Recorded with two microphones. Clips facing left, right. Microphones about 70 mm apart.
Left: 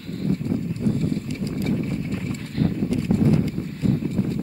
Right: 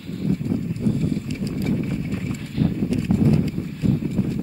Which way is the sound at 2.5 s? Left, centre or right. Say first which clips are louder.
Right 1 dB; left.